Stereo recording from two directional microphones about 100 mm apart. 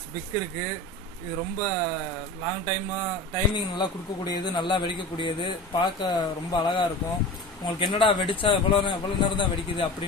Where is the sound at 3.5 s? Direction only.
45° left (ahead or behind).